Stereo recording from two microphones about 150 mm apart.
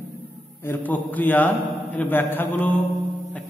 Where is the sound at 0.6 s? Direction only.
10° left (ahead or behind).